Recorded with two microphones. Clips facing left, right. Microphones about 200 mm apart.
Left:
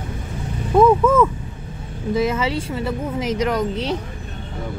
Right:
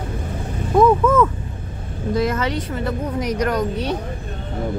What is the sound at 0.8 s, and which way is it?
A woman's voice, 10° left (ahead or behind).